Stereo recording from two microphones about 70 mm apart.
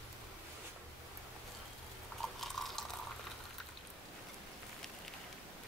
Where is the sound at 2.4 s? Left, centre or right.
Centre.